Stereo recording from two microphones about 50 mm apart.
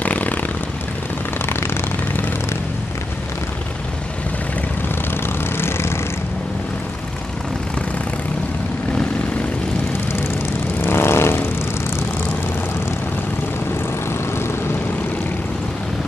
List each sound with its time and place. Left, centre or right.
0.0 s vehicle: left
1.4 s vehicle: left
4.8 s vehicle: left
10.8 s vehicle: left